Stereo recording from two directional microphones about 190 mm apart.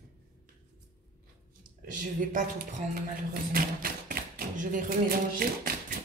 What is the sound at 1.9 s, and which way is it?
Speech, 45° right (ahead or behind).